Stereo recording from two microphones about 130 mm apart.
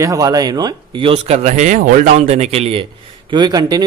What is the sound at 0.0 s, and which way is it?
A man's voice, 25° right (ahead or behind).